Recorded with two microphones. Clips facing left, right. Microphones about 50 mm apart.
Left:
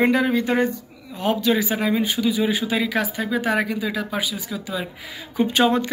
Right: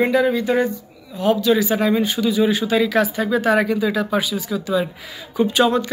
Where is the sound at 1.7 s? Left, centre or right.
Centre.